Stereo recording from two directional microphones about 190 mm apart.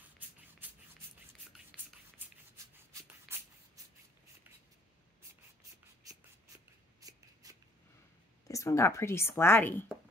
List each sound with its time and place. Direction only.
1.5 s a sound: centre (ahead or behind)
2.9 s shuffle: 15° right (ahead or behind)
6.0 s writing: 20° right (ahead or behind)
7.0 s shuffle: 20° right (ahead or behind)
8.5 s a woman's voice: 15° left (ahead or behind)